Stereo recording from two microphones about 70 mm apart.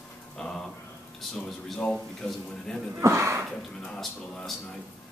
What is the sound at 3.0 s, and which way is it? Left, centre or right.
Speech, right.